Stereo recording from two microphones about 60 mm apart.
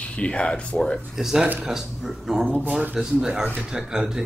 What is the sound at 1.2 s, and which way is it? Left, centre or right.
Speech, centre.